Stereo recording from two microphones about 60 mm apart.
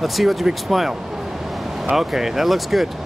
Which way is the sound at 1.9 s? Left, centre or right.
Centre.